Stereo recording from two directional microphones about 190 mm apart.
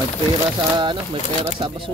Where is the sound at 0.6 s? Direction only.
25° right (ahead or behind).